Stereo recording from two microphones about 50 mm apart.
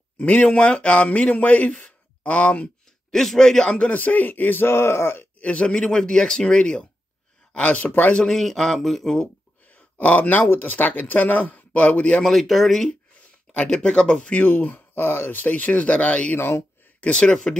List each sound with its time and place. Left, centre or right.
0.2 s a man's voice: left
3.1 s speech: centre
3.7 s speech: left
4.6 s speech: left
5.4 s speech: left
7.5 s speech: left
8.2 s speech: centre
9.7 s speech: left
12.2 s speech: centre
13.7 s speech: centre
14.3 s speech: left
16.3 s speech: left
17.0 s a man's voice: centre